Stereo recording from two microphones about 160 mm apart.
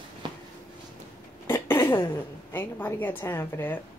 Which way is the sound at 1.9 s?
25° left (ahead or behind).